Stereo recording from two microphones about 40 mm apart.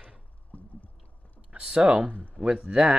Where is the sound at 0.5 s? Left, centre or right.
Left.